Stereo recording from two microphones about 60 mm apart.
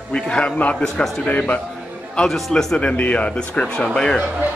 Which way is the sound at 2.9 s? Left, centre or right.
Left.